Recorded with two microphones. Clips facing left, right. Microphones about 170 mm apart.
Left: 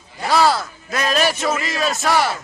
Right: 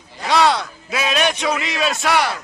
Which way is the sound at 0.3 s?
5° left (ahead or behind).